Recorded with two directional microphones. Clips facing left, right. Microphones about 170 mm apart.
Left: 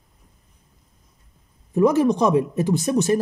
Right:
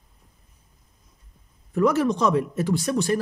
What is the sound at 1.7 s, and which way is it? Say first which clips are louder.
Speech: left 4 dB; 15° left (ahead or behind).